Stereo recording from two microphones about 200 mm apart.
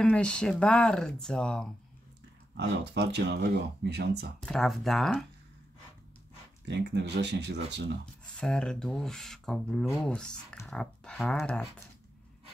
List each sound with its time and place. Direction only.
0.0 s speech: 5° left (ahead or behind)
2.5 s speech: 60° right (ahead or behind)
4.5 s speech: centre (ahead or behind)
6.6 s speech: 60° right (ahead or behind)
8.4 s speech: 5° left (ahead or behind)